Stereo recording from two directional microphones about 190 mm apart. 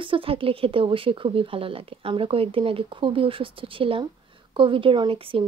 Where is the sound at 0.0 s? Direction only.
30° right (ahead or behind).